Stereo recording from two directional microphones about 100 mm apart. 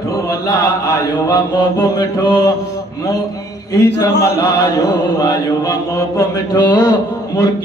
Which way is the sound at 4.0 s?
35° left (ahead or behind).